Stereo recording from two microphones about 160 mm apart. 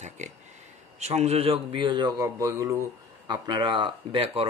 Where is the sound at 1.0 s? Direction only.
45° right (ahead or behind).